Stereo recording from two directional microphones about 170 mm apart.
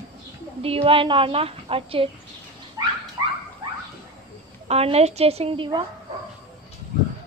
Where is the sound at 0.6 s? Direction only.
35° right (ahead or behind).